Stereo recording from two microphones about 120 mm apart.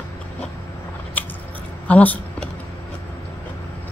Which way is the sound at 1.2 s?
15° left (ahead or behind).